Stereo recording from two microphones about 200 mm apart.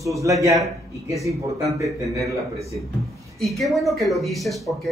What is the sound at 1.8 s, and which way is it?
Speech, 15° right (ahead or behind).